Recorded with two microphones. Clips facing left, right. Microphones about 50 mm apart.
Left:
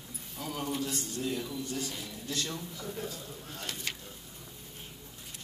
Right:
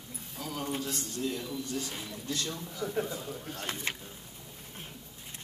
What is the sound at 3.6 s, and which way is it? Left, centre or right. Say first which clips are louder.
Speech: right 3 dB; right.